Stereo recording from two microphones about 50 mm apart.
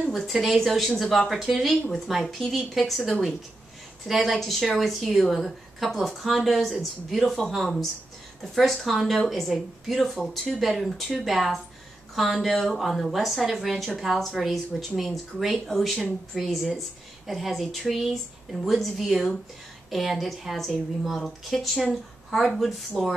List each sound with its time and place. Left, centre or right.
0.1 s a woman's voice: centre
4.2 s a woman's voice: centre